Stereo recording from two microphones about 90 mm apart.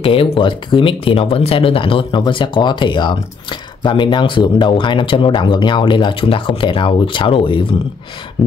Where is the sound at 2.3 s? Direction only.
65° left (ahead or behind).